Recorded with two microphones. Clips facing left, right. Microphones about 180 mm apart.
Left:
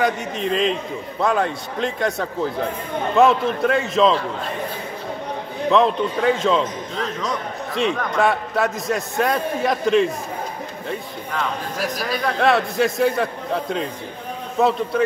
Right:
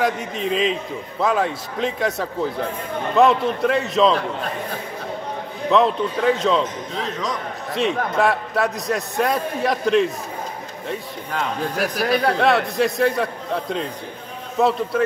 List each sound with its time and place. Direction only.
0.0 s a man's voice: centre (ahead or behind)
5.7 s a man's voice: centre (ahead or behind)
11.8 s speech: 60° right (ahead or behind)
12.4 s a man's voice: centre (ahead or behind)